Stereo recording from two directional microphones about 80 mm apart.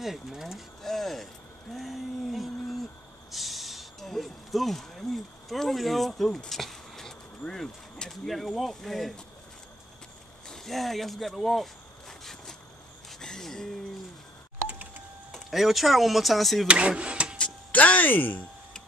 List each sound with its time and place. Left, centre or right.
0.0 s speech: centre
10.5 s a sound: centre
14.7 s a sound: right
15.3 s speech: centre
16.6 s speech: centre
17.4 s speech: centre